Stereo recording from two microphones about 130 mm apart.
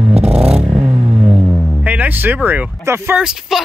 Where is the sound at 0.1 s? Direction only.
50° right (ahead or behind).